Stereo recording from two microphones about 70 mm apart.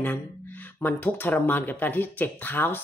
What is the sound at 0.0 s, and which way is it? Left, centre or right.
Speech, left.